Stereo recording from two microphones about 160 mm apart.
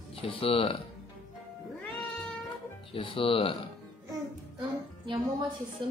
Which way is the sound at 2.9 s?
35° left (ahead or behind).